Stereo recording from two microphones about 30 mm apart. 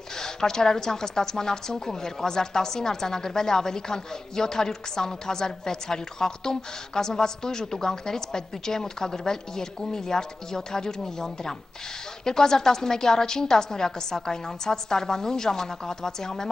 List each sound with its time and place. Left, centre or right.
0.2 s a woman's voice: centre